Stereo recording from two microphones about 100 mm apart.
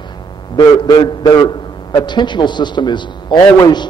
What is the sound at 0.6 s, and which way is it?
A man's voice, 45° left (ahead or behind).